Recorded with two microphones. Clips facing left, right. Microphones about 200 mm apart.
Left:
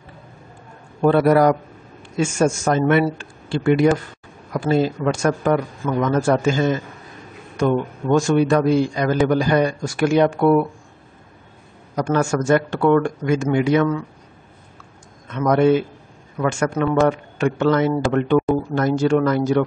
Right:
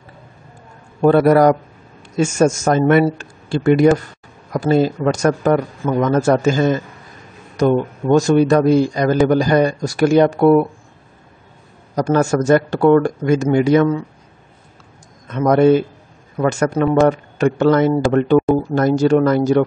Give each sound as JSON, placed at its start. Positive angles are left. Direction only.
{"t": 1.0, "sound": "a man's voice", "side_deg": -40}
{"t": 11.9, "sound": "a man's voice", "side_deg": -40}
{"t": 15.2, "sound": "a man's voice", "side_deg": -40}